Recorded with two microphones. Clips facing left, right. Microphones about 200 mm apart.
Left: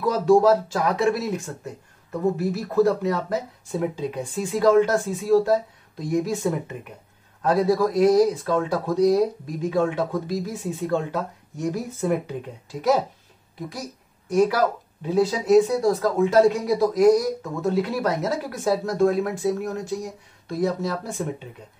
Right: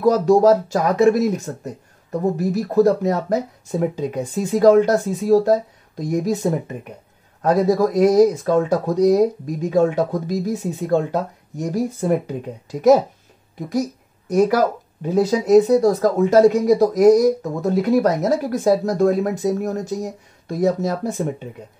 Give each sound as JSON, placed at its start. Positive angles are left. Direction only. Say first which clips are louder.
{"t": 0.0, "sound": "speech", "louder": "right 4 dB", "side_deg": -40}
{"t": 14.3, "sound": "speech", "louder": "right 3 dB", "side_deg": -40}